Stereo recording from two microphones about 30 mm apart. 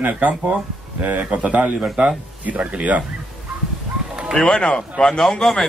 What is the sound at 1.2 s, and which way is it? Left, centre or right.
Speech, right.